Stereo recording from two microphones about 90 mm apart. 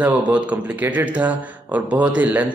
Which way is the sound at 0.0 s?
15° right (ahead or behind).